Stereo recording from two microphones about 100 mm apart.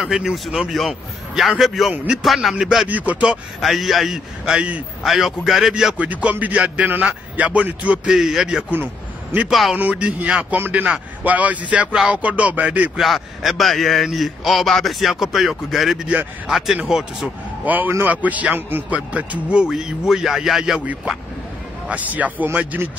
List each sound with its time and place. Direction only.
0.0 s a man's voice: 5° right (ahead or behind)
2.9 s a man's voice: 15° right (ahead or behind)
3.6 s a man's voice: centre (ahead or behind)
5.9 s a man's voice: 15° right (ahead or behind)
9.8 s a man's voice: 15° right (ahead or behind)
13.0 s a man's voice: centre (ahead or behind)
17.6 s a man's voice: 20° right (ahead or behind)